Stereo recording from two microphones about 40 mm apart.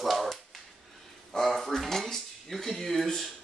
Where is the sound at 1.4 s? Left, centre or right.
Centre.